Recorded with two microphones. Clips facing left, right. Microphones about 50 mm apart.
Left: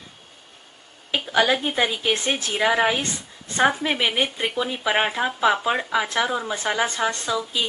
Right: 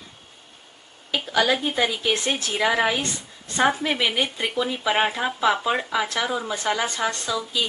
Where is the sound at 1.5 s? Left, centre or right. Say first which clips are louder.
Left 1 dB; centre.